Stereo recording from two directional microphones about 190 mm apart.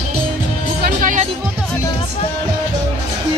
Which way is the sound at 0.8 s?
45° right (ahead or behind).